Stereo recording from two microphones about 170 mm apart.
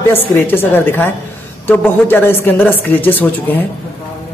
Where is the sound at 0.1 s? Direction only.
10° left (ahead or behind).